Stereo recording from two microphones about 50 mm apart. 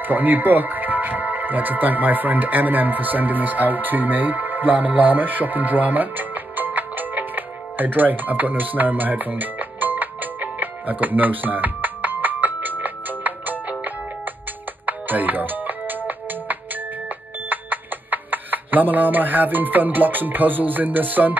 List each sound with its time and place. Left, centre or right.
0.0 s music: right
17.5 s speech: right